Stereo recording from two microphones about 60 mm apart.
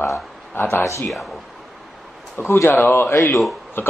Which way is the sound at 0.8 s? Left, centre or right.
Left.